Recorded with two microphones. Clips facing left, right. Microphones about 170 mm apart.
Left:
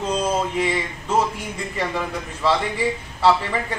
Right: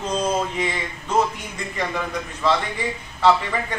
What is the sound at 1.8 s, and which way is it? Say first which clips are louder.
Speech: even; 5° left (ahead or behind).